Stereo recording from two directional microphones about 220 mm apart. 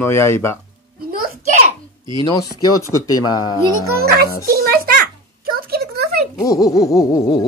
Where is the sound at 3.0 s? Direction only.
15° left (ahead or behind).